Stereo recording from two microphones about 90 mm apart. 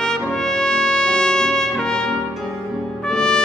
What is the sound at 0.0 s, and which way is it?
Trumpet, 5° left (ahead or behind).